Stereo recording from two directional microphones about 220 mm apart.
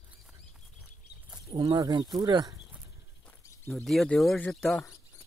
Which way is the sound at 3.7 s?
Centre (ahead or behind).